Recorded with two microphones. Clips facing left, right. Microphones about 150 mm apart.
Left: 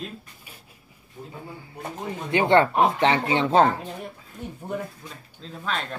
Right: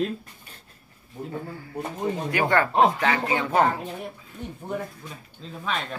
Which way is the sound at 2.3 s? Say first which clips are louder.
Left 6 dB; 25° left (ahead or behind).